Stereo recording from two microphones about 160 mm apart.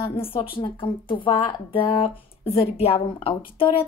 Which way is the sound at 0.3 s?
30° left (ahead or behind).